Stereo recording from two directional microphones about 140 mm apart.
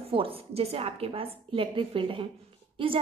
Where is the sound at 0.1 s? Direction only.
40° right (ahead or behind).